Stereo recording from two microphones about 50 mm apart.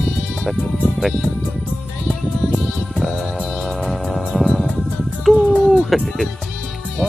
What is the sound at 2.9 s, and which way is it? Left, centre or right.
Music, centre.